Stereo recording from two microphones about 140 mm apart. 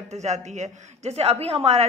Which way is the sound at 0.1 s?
55° right (ahead or behind).